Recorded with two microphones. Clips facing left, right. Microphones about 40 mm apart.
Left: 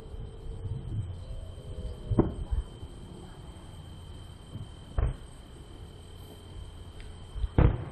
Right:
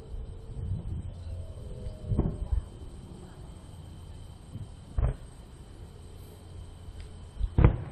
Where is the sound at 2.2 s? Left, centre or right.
Left.